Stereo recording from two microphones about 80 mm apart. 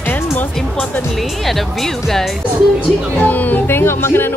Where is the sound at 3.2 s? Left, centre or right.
Left.